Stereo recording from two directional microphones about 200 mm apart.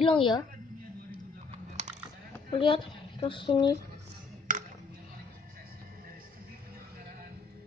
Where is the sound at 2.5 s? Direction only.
25° left (ahead or behind).